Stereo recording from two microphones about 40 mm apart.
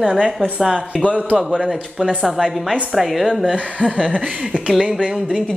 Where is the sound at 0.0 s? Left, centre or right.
Right.